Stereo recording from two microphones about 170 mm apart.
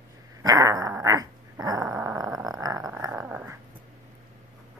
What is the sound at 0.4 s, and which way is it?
Dog, 20° right (ahead or behind).